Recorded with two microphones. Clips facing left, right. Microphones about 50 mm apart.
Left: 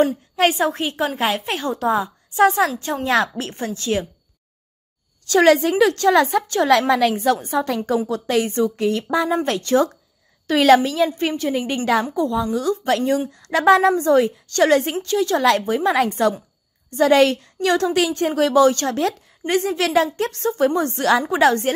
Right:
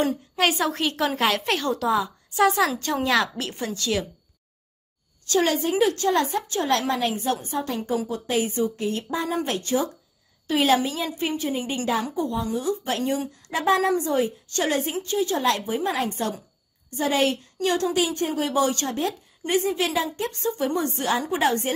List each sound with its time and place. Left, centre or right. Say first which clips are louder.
0.4 s a woman's voice: left 5 dB; left
1.6 s a woman's voice: left 3 dB; left
5.3 s a woman's voice: left 8 dB; left
7.4 s a woman's voice: left 6 dB; left
9.5 s a woman's voice: left 7 dB; left
11.1 s a woman's voice: left 5 dB; left
11.9 s a woman's voice: left 7 dB; left
18.9 s a woman's voice: left 5 dB; left